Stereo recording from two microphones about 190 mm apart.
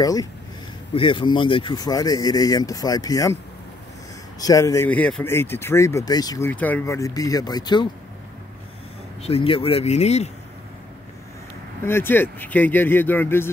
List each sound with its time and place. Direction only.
0.0 s speech: 20° left (ahead or behind)
4.4 s speech: 20° left (ahead or behind)
6.5 s speech: 10° left (ahead or behind)
9.2 s speech: 30° left (ahead or behind)
11.8 s speech: 10° left (ahead or behind)